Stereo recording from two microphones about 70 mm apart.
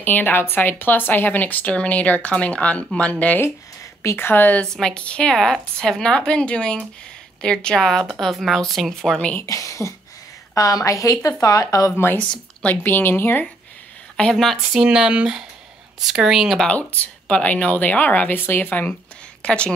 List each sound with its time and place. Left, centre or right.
0.0 s speech: left
4.0 s speech: left
4.7 s a woman's voice: centre
9.4 s a woman's voice: left
12.0 s speech: left
14.3 s a woman's voice: centre
16.7 s speech: left
19.4 s a woman's voice: centre